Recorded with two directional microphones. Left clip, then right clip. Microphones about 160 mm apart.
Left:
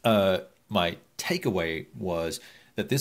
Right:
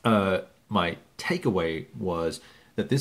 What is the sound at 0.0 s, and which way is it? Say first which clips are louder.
Speech: left 1 dB; 15° left (ahead or behind).